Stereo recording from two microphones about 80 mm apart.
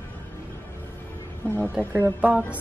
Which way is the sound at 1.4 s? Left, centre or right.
Left.